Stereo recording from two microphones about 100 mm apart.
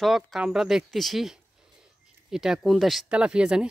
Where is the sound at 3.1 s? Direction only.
10° right (ahead or behind).